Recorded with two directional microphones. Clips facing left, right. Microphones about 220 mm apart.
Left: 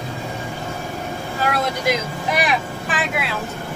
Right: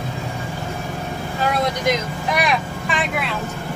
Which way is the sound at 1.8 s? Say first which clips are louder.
Right 1 dB; 5° left (ahead or behind).